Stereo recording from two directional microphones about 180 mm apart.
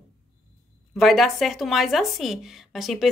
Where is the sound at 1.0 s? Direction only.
Centre (ahead or behind).